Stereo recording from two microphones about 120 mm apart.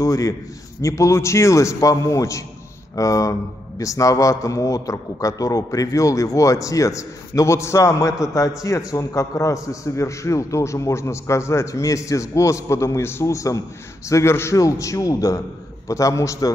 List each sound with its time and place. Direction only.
0.0 s a man's voice: 30° left (ahead or behind)